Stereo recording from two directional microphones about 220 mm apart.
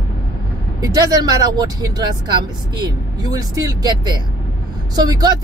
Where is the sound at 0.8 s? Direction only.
20° right (ahead or behind).